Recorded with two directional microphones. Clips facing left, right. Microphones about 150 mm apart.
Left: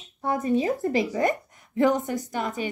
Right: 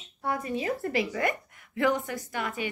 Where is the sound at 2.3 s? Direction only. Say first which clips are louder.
Left 2 dB; 40° left (ahead or behind).